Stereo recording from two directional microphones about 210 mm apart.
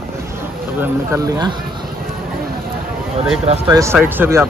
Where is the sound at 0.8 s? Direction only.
15° right (ahead or behind).